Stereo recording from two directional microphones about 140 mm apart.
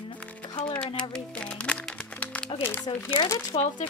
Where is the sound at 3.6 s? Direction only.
65° left (ahead or behind).